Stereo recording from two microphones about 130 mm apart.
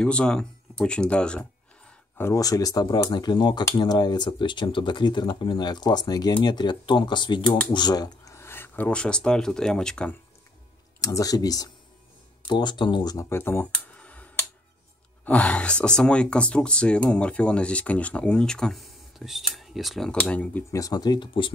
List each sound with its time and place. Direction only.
0.0 s speech: 5° left (ahead or behind)
11.0 s speech: 25° left (ahead or behind)
13.2 s computer keyboard: 20° left (ahead or behind)
15.2 s speech: 10° left (ahead or behind)
20.2 s speech: 10° left (ahead or behind)
20.7 s speech: 30° left (ahead or behind)